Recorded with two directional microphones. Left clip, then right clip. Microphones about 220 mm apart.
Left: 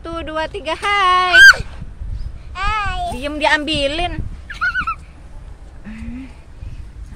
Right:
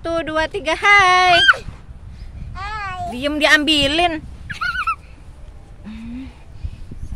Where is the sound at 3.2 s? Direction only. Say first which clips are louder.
Right 3 dB; 45° right (ahead or behind).